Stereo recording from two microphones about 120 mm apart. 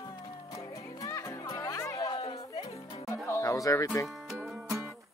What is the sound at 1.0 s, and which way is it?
Music, 25° left (ahead or behind).